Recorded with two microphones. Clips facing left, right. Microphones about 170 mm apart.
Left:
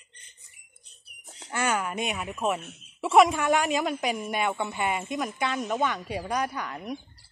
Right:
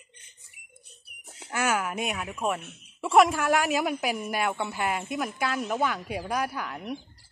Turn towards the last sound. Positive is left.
turn(degrees=-5)  # may be behind; listen again after turning